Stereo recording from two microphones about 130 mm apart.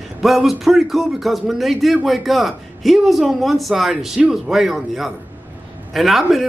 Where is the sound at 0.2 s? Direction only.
Centre (ahead or behind).